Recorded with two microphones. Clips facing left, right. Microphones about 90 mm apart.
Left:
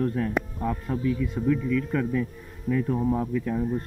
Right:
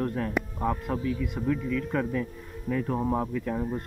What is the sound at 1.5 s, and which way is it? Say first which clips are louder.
Speech: left 4 dB; 30° right (ahead or behind).